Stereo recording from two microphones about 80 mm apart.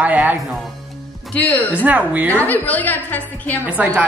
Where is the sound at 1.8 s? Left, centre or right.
Centre.